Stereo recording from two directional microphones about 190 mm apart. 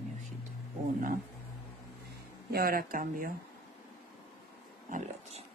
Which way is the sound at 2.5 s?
50° right (ahead or behind).